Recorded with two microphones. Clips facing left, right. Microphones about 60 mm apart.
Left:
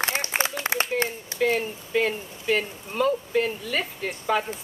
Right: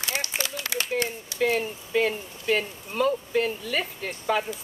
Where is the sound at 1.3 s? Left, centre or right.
Centre.